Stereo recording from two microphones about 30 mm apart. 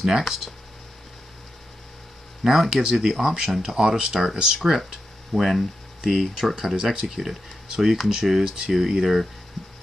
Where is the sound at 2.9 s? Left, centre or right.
Centre.